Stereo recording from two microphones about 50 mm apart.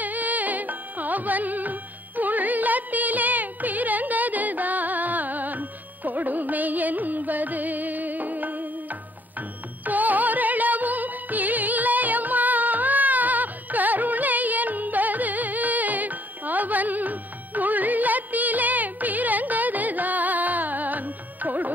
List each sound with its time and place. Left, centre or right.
0.0 s music: right
9.8 s music: right